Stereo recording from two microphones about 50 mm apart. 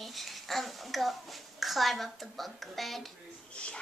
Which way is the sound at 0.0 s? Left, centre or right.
Centre.